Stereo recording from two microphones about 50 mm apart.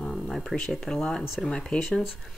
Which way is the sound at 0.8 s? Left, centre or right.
Centre.